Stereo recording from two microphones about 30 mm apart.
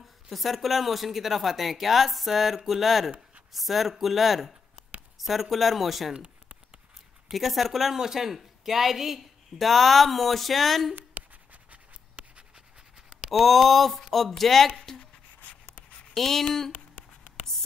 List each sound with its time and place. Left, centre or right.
0.3 s speech: centre
7.3 s speech: centre
9.6 s speech: centre
11.2 s scratch: right
11.7 s writing: right
13.3 s speech: centre
15.4 s writing: left
16.1 s speech: centre